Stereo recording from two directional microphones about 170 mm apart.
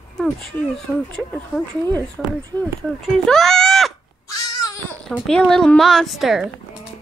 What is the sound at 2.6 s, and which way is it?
Speech, 5° left (ahead or behind).